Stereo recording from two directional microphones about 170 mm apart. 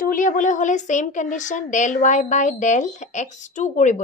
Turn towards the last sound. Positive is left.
turn(degrees=45)  # may be behind; listen again after turning